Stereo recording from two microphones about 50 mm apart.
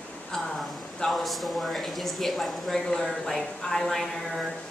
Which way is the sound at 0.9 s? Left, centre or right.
Centre.